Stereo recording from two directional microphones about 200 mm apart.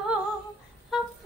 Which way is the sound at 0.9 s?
Centre (ahead or behind).